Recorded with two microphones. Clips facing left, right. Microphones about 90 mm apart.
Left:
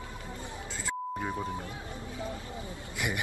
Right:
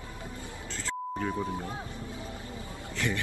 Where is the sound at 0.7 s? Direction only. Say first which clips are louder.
Even; 10° left (ahead or behind).